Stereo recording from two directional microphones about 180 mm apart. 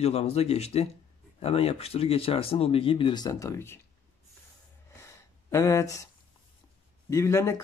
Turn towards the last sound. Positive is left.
turn(degrees=15)  # may be behind; listen again after turning